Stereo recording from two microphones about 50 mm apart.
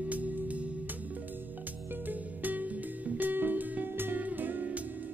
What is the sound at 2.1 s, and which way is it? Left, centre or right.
Music, right.